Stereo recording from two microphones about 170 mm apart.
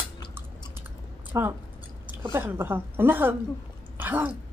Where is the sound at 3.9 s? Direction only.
10° right (ahead or behind).